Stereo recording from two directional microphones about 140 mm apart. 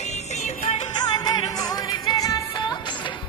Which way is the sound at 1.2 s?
25° left (ahead or behind).